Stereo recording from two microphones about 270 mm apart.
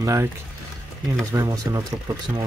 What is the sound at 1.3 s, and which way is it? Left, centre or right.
Speech, centre.